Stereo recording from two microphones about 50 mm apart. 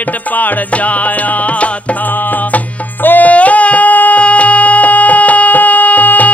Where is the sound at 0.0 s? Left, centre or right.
Left.